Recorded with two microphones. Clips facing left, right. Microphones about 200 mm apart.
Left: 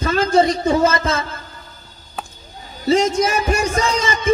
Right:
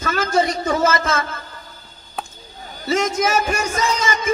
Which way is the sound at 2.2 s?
Centre (ahead or behind).